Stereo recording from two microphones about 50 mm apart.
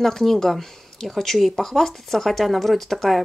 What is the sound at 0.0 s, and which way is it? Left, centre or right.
Speech, centre.